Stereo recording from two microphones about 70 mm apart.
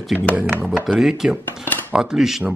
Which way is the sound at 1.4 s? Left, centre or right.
Left.